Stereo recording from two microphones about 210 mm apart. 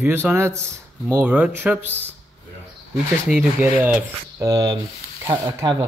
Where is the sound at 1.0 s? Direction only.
5° right (ahead or behind).